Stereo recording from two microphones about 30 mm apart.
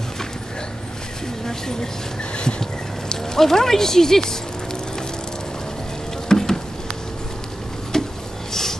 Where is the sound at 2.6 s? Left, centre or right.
Centre.